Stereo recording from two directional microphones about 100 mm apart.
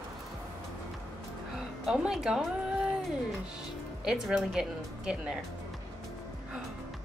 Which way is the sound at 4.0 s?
5° right (ahead or behind).